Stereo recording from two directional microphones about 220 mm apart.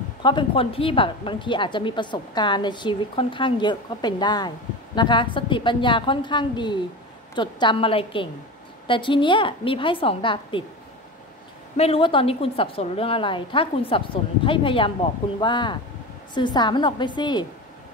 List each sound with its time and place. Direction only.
0.2 s a woman's voice: 20° left (ahead or behind)
11.7 s a woman's voice: 25° left (ahead or behind)